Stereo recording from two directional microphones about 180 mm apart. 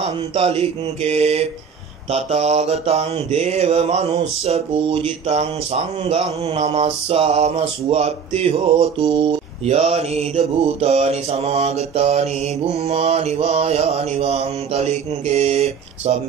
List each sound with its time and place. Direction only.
0.0 s mantra: 35° right (ahead or behind)